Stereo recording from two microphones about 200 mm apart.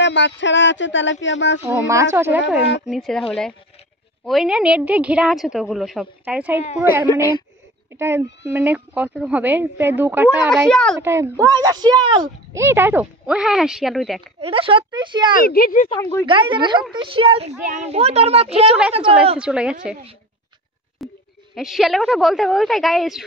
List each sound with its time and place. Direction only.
0.0 s speech: 65° left (ahead or behind)
1.6 s speech: 15° right (ahead or behind)
2.9 s a woman's voice: centre (ahead or behind)
10.7 s a woman's voice: 5° left (ahead or behind)
11.0 s speech: 15° right (ahead or behind)
14.4 s speech: 25° right (ahead or behind)
15.4 s speech: 45° left (ahead or behind)
15.9 s speech: 10° left (ahead or behind)
16.3 s a woman's voice: 25° right (ahead or behind)
19.3 s a woman's voice: 5° right (ahead or behind)
21.0 s a sound: centre (ahead or behind)
21.5 s a woman's voice: centre (ahead or behind)